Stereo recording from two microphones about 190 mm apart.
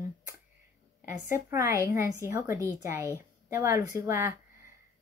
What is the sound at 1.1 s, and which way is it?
A woman's voice, 15° right (ahead or behind).